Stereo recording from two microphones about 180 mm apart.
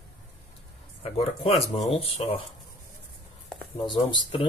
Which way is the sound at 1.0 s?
35° left (ahead or behind).